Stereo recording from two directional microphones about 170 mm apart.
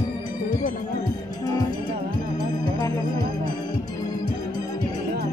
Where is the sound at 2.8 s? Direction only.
20° left (ahead or behind).